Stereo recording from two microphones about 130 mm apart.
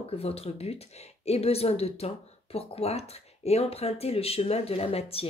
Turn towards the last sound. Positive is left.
turn(degrees=50)  # may be behind; listen again after turning